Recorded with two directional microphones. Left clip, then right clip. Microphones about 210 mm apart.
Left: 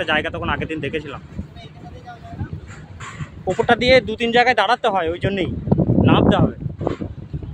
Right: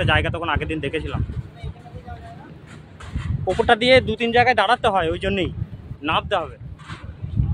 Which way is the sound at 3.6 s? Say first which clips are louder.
Left 1 dB; 5° right (ahead or behind).